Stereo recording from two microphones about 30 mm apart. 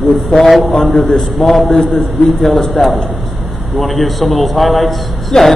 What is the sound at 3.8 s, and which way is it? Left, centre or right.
A man's voice, centre.